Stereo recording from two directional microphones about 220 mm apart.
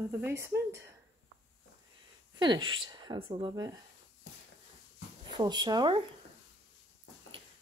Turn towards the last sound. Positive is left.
turn(degrees=-20)  # may be behind; listen again after turning